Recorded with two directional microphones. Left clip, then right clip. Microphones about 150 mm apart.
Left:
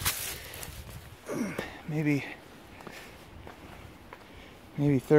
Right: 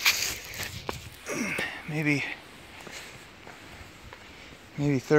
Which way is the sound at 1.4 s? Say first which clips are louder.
Right 5 dB; 20° left (ahead or behind).